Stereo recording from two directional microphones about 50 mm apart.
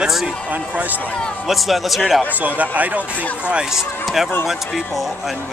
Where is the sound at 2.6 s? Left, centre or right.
Right.